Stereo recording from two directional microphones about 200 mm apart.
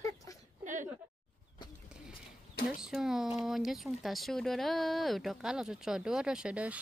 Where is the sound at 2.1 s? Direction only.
45° left (ahead or behind).